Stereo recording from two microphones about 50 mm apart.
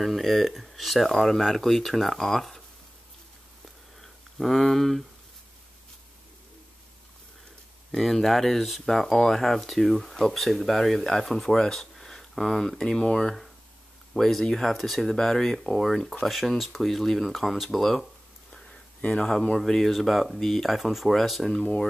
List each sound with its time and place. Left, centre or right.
0.0 s speech: centre
4.0 s speech: centre
7.9 s speech: centre
18.5 s a sound: centre
19.6 s speech: centre